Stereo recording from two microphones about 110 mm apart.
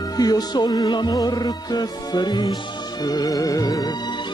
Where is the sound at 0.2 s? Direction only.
35° left (ahead or behind).